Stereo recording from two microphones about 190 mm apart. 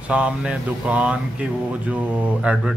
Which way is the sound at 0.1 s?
5° right (ahead or behind).